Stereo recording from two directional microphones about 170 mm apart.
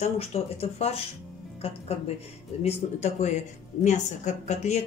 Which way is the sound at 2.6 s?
40° left (ahead or behind).